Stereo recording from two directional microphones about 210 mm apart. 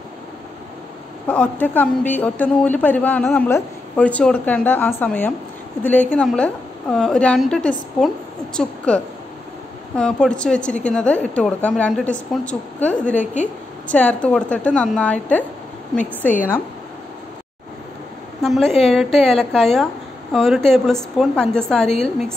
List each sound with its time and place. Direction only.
1.2 s a woman's voice: 5° left (ahead or behind)
13.2 s a woman's voice: 35° left (ahead or behind)
13.8 s a woman's voice: 5° left (ahead or behind)
18.4 s a woman's voice: centre (ahead or behind)